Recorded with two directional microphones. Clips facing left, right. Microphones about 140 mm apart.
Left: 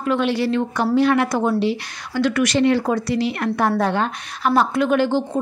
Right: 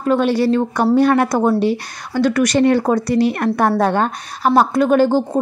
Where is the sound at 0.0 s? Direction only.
40° right (ahead or behind).